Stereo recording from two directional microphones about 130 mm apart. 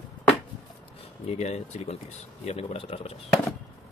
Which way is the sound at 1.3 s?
55° left (ahead or behind).